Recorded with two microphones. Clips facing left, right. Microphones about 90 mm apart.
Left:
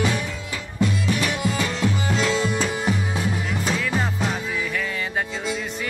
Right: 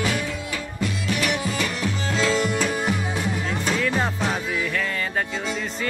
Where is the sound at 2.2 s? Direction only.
20° left (ahead or behind).